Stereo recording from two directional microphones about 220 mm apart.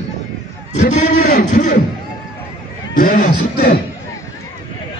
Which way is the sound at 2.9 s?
40° left (ahead or behind).